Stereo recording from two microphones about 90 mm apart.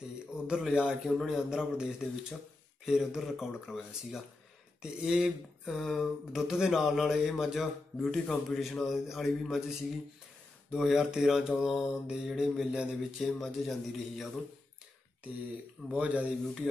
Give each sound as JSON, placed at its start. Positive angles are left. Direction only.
{"t": 0.5, "sound": "speech", "side_deg": -10}
{"t": 1.1, "sound": "mantra", "side_deg": -5}
{"t": 15.9, "sound": "speech", "side_deg": -15}